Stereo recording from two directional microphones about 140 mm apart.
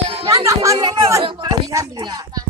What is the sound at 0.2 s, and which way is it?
Speech, 25° right (ahead or behind).